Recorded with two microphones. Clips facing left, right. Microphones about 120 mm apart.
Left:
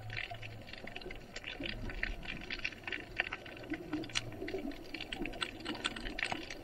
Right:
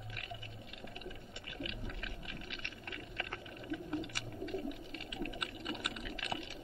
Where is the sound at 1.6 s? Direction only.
20° right (ahead or behind).